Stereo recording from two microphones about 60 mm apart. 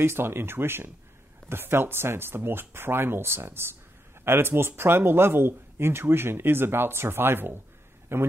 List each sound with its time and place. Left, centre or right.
0.0 s a man's voice: right